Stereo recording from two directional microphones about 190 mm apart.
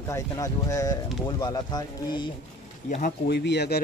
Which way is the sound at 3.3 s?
65° left (ahead or behind).